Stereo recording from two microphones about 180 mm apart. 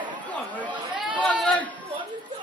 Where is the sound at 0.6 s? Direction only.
10° right (ahead or behind).